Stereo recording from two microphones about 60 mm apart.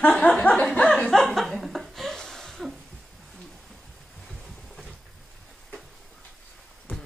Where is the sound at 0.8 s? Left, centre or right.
Centre.